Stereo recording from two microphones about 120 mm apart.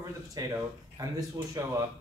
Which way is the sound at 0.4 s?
30° right (ahead or behind).